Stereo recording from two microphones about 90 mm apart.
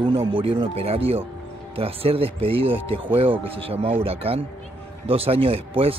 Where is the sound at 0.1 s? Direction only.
70° right (ahead or behind); by 5.9 s 90° right.